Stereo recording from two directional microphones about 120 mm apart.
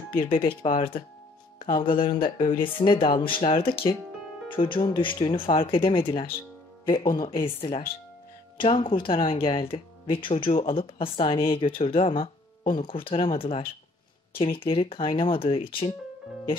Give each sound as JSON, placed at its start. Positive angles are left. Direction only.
{"t": 0.1, "sound": "speech", "side_deg": 45}